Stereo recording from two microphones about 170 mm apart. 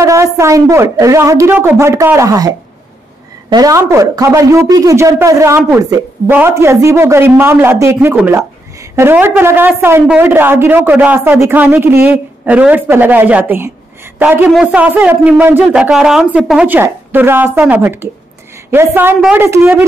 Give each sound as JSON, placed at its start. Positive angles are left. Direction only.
{"t": 0.0, "sound": "speech", "side_deg": -15}